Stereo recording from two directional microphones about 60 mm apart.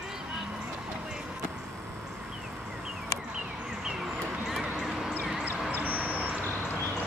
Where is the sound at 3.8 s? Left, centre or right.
Centre.